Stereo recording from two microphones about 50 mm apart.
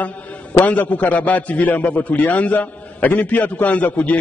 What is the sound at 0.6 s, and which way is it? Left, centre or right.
A man's voice, left.